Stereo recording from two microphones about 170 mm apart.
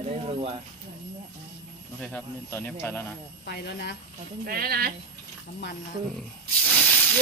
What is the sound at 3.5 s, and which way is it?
Speech, 75° left (ahead or behind).